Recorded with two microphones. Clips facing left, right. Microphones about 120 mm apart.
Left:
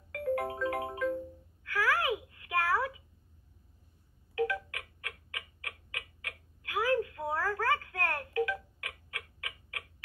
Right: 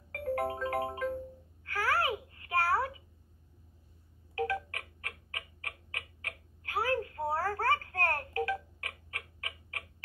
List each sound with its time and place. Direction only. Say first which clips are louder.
0.1 s music: left 1 dB; 35° right (ahead or behind)
1.6 s babbling: left 1 dB; 35° right (ahead or behind)
4.4 s tick-tock: left 1 dB; 35° right (ahead or behind)